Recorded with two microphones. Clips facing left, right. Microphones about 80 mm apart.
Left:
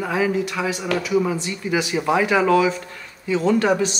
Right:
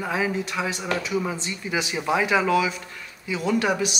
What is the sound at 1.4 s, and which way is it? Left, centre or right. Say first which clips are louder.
A man's voice: left 5 dB; right.